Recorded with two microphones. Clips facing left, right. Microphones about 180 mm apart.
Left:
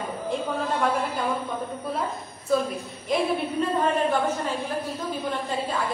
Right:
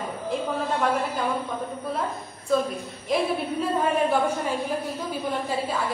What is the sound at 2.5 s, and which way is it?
A woman's voice, centre (ahead or behind).